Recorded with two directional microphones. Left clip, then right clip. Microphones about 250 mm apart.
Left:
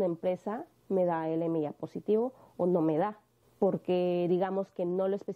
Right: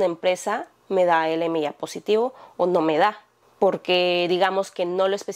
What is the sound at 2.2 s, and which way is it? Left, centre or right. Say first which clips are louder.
Speech: right 8 dB; right.